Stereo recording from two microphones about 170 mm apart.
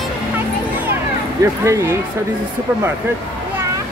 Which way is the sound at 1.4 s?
15° right (ahead or behind).